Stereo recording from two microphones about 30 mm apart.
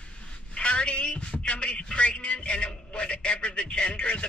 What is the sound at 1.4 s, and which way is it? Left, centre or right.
A man's voice, left.